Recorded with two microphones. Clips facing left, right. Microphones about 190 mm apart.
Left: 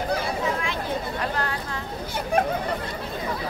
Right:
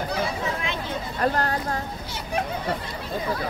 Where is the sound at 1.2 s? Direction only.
45° right (ahead or behind).